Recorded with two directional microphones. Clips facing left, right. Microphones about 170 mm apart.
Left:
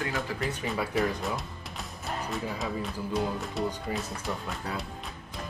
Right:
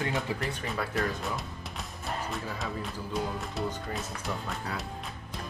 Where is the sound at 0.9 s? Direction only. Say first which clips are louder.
Left 3 dB; centre (ahead or behind).